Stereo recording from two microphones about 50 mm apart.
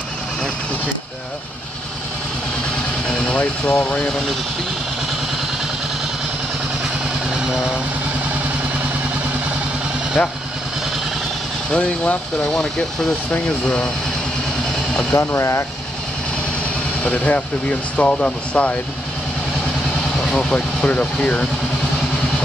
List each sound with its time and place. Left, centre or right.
3.6 s speech: left
7.3 s vehicle: centre
10.2 s speech: left
11.7 s speech: centre
15.1 s speech: left
17.0 s speech: left
20.2 s speech: centre
20.8 s speech: left